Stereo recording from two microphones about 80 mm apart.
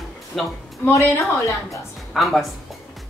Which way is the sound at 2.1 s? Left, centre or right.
Centre.